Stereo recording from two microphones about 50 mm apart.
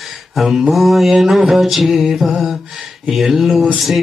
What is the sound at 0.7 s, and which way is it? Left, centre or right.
Speech, centre.